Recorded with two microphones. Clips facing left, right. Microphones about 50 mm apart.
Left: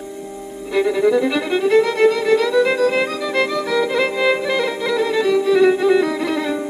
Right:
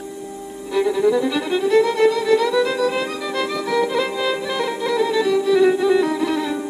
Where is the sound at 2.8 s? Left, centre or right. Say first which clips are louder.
Left 3 dB; left.